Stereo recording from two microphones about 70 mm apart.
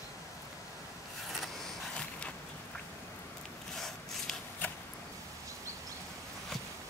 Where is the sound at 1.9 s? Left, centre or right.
Centre.